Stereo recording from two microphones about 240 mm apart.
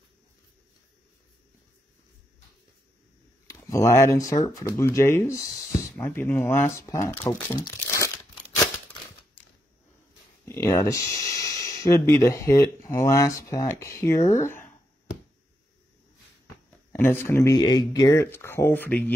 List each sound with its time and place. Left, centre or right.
3.4 s speech: centre
7.6 s crumpling: centre
10.7 s speech: centre
16.9 s speech: centre